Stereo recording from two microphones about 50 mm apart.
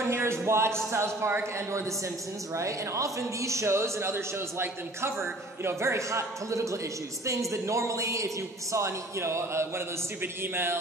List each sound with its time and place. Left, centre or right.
0.0 s a sound: right
0.9 s a man's voice: right
1.7 s a woman's voice: right
8.7 s a man's voice: right